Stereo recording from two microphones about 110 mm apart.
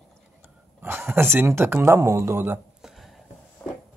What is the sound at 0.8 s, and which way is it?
Speech, 20° right (ahead or behind).